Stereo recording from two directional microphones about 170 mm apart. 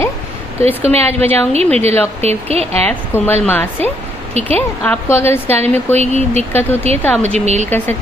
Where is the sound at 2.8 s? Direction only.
10° left (ahead or behind).